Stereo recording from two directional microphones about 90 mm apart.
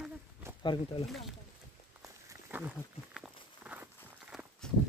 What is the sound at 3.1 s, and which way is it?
Walk, 10° right (ahead or behind).